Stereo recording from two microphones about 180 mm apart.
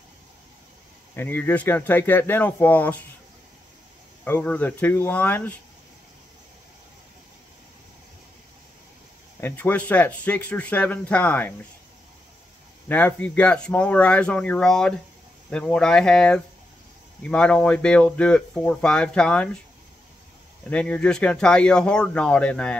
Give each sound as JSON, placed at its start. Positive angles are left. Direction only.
{"t": 1.1, "sound": "speech", "side_deg": 10}
{"t": 4.2, "sound": "speech", "side_deg": 10}
{"t": 9.4, "sound": "speech", "side_deg": 10}
{"t": 12.8, "sound": "speech", "side_deg": 10}
{"t": 20.7, "sound": "speech", "side_deg": 5}